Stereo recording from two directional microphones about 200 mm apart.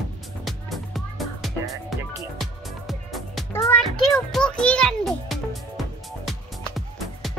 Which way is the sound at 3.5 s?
15° left (ahead or behind).